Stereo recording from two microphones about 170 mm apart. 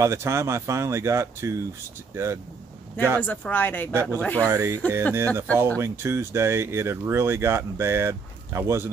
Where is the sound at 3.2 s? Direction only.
10° left (ahead or behind).